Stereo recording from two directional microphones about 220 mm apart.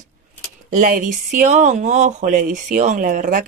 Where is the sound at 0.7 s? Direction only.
35° right (ahead or behind).